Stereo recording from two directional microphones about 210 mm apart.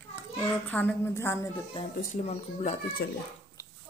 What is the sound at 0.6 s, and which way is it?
Speech, 10° left (ahead or behind).